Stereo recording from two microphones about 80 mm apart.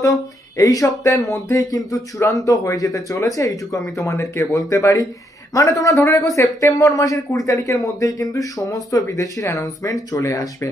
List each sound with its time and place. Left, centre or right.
0.0 s speech: left